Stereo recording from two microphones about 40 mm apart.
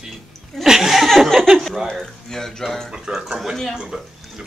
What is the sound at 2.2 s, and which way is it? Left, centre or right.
Speech, centre.